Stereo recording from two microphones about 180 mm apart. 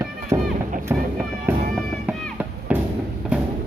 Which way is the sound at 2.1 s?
10° right (ahead or behind).